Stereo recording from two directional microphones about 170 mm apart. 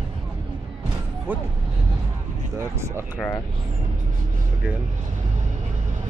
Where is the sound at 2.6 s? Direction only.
15° right (ahead or behind).